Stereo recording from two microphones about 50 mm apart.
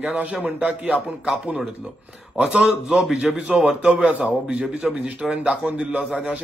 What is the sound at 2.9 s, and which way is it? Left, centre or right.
A man's voice, centre.